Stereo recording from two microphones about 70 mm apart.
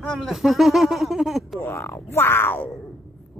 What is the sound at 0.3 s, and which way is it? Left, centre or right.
Speech, centre.